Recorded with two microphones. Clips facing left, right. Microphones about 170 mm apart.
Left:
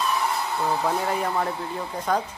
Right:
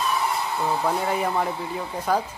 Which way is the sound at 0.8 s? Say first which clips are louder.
Right 1 dB; centre (ahead or behind).